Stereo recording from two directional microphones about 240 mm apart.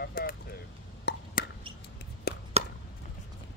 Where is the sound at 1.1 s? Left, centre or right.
Left.